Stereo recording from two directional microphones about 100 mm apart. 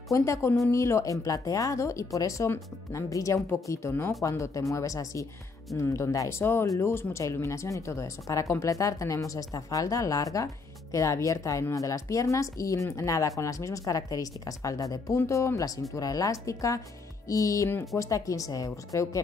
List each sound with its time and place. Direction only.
0.1 s speech: 30° left (ahead or behind)